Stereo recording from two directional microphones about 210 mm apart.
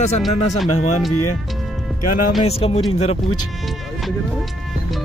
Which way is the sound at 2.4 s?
30° left (ahead or behind).